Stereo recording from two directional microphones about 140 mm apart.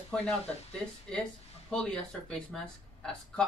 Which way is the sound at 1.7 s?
5° left (ahead or behind).